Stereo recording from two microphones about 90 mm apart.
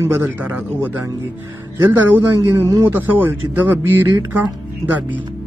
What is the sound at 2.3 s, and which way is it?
Speech, 30° right (ahead or behind).